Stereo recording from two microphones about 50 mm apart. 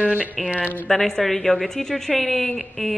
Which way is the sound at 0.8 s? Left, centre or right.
Centre.